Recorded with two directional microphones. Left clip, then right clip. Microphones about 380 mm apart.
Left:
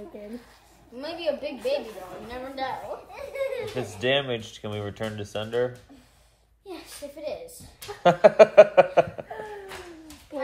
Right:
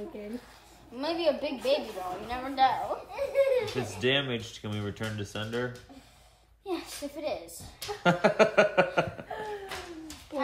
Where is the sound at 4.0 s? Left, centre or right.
Centre.